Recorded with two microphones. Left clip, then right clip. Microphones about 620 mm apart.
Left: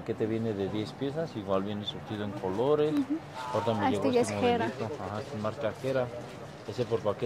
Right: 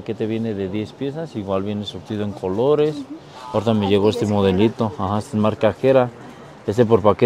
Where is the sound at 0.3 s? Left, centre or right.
Right.